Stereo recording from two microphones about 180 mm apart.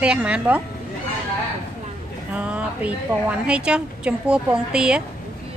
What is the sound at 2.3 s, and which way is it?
A woman's voice, 10° right (ahead or behind).